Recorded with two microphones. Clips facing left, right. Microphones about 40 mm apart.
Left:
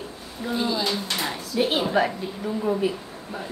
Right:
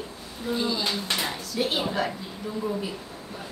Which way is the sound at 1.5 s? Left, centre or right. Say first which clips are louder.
Left 4 dB; left.